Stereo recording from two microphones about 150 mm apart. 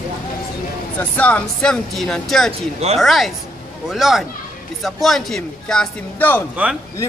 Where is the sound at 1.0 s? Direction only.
10° left (ahead or behind).